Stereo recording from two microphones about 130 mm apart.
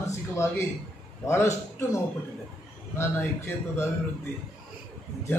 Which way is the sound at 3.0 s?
20° left (ahead or behind).